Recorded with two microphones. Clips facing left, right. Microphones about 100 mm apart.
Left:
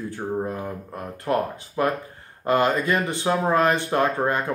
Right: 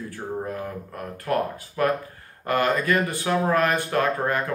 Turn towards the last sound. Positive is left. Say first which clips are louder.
# left 1 dB
turn(degrees=20)  # may be behind; listen again after turning